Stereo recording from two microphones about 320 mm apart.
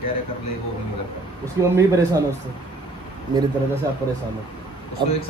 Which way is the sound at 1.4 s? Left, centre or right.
Centre.